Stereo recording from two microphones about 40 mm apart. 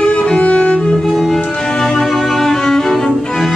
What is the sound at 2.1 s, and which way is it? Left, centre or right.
Cello, centre.